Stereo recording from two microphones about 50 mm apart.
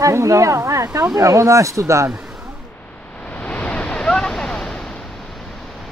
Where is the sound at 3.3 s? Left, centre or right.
Left; by 4.9 s centre.